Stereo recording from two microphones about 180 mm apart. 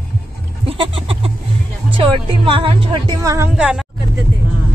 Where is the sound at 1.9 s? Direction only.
30° right (ahead or behind).